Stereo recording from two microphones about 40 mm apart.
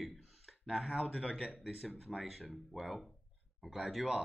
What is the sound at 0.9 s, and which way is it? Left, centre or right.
Speech, centre.